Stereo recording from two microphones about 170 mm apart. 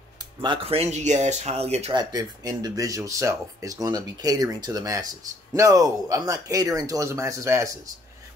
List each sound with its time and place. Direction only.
0.4 s speech: 30° right (ahead or behind)
2.0 s speech: 20° right (ahead or behind)